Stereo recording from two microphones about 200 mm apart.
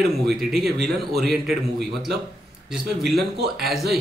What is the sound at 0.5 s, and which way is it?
Speech, 55° right (ahead or behind).